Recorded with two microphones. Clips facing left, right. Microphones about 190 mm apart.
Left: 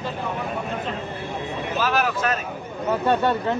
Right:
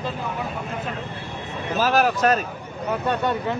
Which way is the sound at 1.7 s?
40° right (ahead or behind).